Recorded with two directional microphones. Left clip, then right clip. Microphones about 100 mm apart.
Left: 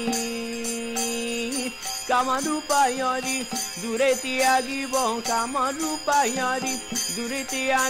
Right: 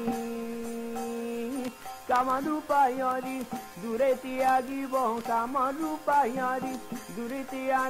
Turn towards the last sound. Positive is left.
turn(degrees=15)  # may be behind; listen again after turning